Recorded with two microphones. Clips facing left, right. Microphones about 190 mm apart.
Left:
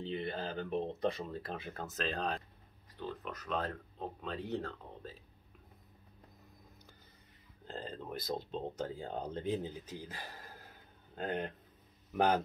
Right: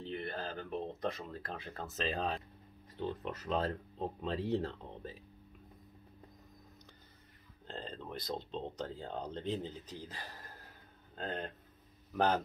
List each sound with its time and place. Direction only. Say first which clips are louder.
0.0 s speech: left 2 dB; 20° left (ahead or behind)
1.7 s speech: right 2 dB; centre (ahead or behind)
3.0 s speech: right 4 dB; 25° right (ahead or behind)
7.6 s speech: left 1 dB; 5° left (ahead or behind)